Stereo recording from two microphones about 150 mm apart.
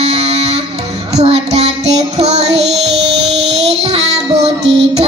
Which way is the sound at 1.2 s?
45° right (ahead or behind).